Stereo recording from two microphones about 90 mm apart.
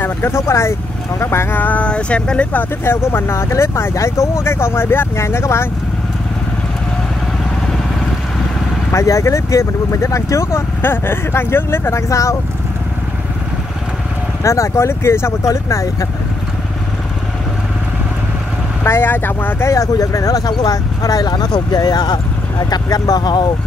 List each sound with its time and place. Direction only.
0.0 s speech: 25° left (ahead or behind)
2.8 s speech: 25° left (ahead or behind)
8.9 s speech: 35° left (ahead or behind)
14.4 s speech: 35° left (ahead or behind)
18.9 s speech: 25° left (ahead or behind)
19.7 s speech: 40° left (ahead or behind); by 23.5 s 55° left (ahead or behind)